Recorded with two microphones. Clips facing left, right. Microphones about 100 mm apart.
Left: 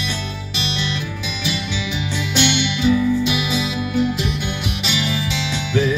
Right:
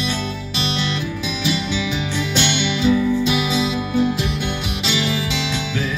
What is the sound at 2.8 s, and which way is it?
Music, 35° right (ahead or behind).